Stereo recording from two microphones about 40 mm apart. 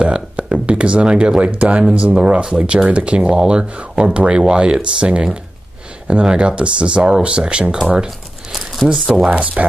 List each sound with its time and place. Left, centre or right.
0.0 s speech: right
3.2 s speech: centre
8.9 s speech: centre
9.3 s speech: right